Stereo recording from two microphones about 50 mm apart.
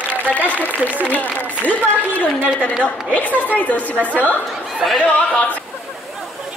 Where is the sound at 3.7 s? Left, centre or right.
Left.